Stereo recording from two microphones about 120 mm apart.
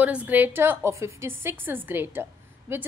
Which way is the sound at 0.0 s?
10° right (ahead or behind).